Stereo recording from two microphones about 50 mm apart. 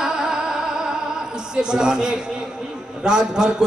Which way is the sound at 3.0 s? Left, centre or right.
Centre.